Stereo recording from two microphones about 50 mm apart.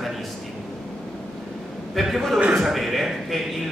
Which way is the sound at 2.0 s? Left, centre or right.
Centre.